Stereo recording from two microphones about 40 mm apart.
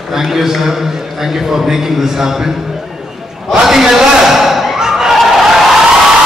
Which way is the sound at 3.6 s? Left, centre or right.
Centre.